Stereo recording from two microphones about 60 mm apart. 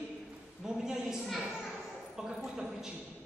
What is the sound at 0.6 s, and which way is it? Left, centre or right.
A woman's voice, centre.